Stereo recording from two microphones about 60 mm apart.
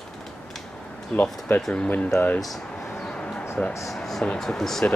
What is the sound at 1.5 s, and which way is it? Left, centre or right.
Speech, left.